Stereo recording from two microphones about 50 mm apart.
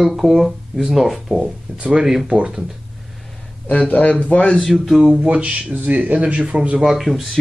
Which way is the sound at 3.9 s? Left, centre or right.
Left.